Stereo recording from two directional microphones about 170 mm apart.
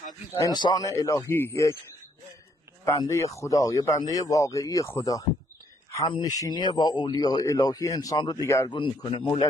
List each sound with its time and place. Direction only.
0.4 s speech: 25° left (ahead or behind)
2.8 s speech: 20° left (ahead or behind)
8.7 s speech: 30° left (ahead or behind)